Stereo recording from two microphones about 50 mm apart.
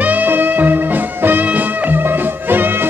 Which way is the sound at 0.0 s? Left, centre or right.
Right.